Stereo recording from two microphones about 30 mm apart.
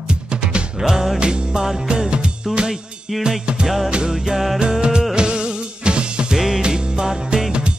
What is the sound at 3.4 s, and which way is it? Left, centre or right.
Music, right.